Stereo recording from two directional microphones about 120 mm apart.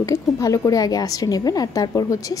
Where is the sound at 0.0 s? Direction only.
30° left (ahead or behind).